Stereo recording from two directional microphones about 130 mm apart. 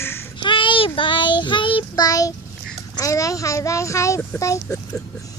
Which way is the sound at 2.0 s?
25° left (ahead or behind).